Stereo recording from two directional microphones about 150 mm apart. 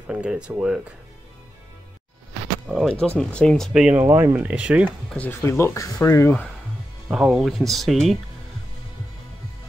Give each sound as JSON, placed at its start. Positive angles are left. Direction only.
{"t": 0.0, "sound": "speech", "side_deg": -5}
{"t": 2.7, "sound": "speech", "side_deg": 5}
{"t": 5.1, "sound": "speech", "side_deg": 15}
{"t": 7.1, "sound": "speech", "side_deg": -5}